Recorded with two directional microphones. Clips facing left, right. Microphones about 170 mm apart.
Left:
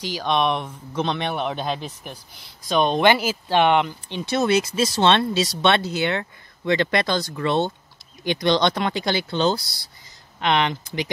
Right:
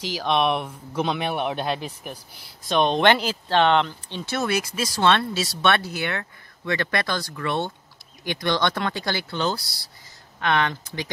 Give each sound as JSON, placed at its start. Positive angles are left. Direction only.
{"t": 0.0, "sound": "speech", "side_deg": -5}